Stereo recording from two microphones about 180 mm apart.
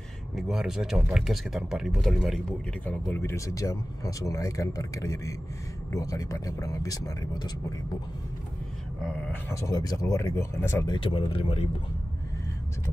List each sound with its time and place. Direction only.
0.4 s speech: centre (ahead or behind); by 7.5 s 20° left (ahead or behind)
9.0 s speech: 5° left (ahead or behind)
9.5 s speech: 20° left (ahead or behind)
11.0 s speech: 30° left (ahead or behind)